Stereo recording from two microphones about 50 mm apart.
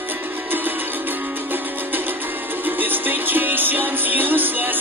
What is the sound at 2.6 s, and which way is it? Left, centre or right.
Music, right.